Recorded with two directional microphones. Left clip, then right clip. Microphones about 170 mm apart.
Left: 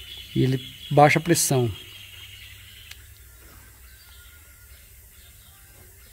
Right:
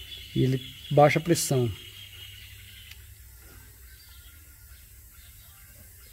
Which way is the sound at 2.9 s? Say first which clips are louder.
Left 5 dB; 25° left (ahead or behind).